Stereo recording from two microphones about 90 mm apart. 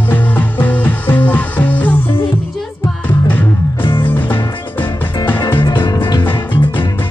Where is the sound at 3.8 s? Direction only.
60° left (ahead or behind).